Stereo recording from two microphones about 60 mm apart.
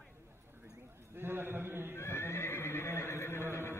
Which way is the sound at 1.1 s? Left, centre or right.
Right.